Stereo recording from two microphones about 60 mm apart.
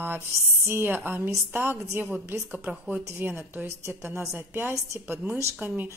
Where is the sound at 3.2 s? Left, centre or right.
Right.